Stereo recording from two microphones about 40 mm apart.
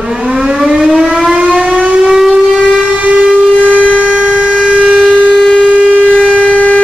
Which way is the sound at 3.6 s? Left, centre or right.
Right.